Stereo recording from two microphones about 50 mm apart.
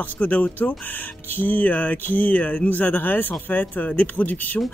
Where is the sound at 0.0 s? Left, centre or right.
Left.